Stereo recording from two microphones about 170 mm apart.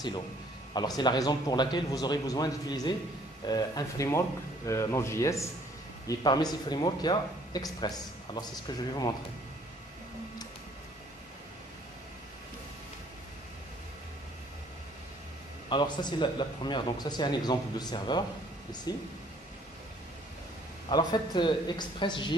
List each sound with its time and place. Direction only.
0.7 s a man's voice: 25° left (ahead or behind)
15.7 s a man's voice: 25° left (ahead or behind)
20.9 s a man's voice: 25° left (ahead or behind)